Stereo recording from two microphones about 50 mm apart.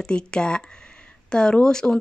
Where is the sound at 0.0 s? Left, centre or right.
Centre.